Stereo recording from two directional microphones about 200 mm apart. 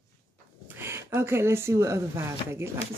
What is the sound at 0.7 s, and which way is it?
Speech, 10° right (ahead or behind).